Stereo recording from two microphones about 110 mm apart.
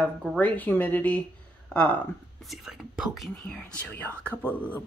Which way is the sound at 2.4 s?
Centre (ahead or behind).